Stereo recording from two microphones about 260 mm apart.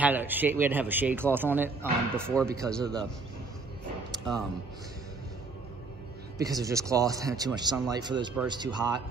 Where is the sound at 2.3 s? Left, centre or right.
Centre.